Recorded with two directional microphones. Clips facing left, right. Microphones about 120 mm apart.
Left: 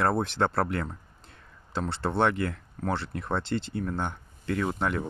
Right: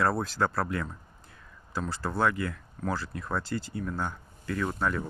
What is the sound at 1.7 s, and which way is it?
Speech, 25° left (ahead or behind).